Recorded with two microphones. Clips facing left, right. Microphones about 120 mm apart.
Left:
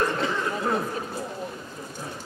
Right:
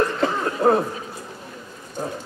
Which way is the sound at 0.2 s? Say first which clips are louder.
Right 6 dB; 50° right (ahead or behind).